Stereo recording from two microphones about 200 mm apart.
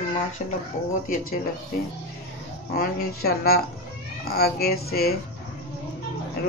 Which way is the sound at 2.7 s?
50° left (ahead or behind).